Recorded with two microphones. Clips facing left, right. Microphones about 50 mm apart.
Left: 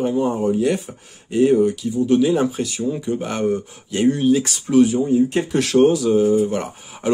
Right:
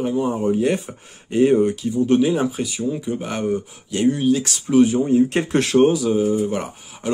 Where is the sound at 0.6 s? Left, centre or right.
Right.